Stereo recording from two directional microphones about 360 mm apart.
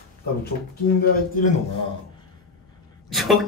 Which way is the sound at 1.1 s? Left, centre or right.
Left.